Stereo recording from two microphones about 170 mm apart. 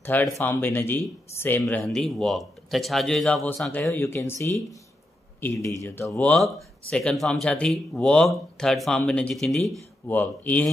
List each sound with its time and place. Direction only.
0.0 s speech: 10° left (ahead or behind)
6.1 s speech: 5° left (ahead or behind)